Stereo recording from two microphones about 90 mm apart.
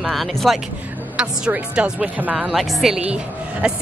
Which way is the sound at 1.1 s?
10° right (ahead or behind).